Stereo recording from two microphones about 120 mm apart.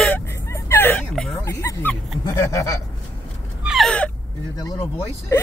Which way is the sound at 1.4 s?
25° left (ahead or behind).